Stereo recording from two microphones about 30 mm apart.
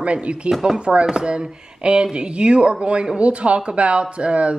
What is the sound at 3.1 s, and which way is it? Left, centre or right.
Speech, right.